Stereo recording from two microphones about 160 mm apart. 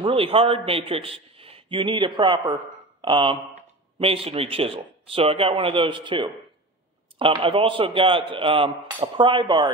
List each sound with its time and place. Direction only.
0.0 s speech: 35° right (ahead or behind)